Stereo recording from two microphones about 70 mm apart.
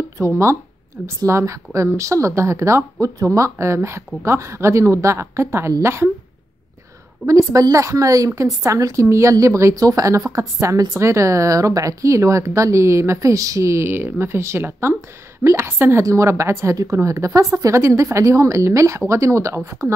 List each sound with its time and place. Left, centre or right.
0.2 s speech: right
7.2 s speech: right